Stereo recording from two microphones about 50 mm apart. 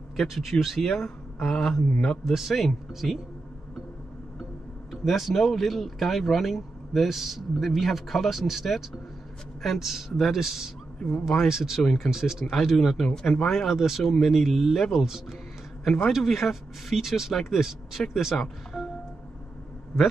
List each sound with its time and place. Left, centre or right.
0.3 s a man's voice: centre
5.0 s speech: centre
11.0 s speech: left
11.4 s speech: centre
11.8 s a man's voice: centre
12.1 s speech: centre